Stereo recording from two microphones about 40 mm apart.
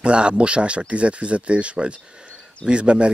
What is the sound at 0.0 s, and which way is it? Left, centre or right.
Speech, right.